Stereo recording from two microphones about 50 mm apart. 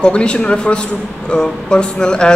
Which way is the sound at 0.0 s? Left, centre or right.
Centre.